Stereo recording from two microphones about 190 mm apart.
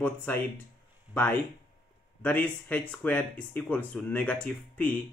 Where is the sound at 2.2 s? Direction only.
10° left (ahead or behind).